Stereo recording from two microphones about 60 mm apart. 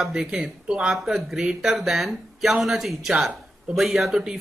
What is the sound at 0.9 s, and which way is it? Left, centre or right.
Speech, centre.